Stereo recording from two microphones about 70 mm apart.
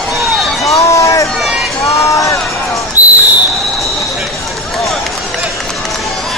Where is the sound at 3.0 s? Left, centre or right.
Right.